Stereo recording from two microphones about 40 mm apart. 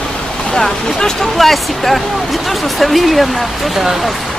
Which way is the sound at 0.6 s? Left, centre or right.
Centre.